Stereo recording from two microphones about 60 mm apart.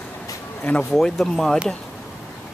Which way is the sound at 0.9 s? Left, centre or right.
Centre.